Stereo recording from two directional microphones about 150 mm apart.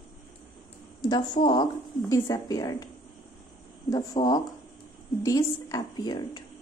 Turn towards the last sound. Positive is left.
turn(degrees=25)  # may be behind; listen again after turning